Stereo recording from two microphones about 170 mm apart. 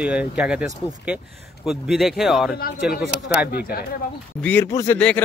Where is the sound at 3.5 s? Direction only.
65° left (ahead or behind).